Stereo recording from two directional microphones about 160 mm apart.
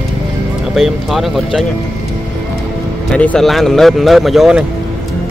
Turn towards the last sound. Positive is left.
turn(degrees=0)  # may be behind; listen again after turning